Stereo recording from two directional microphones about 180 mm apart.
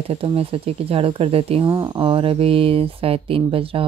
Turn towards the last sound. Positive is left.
turn(degrees=-30)  # may be behind; listen again after turning